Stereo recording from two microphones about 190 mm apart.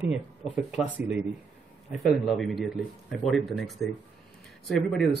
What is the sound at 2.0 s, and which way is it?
Speech, centre (ahead or behind).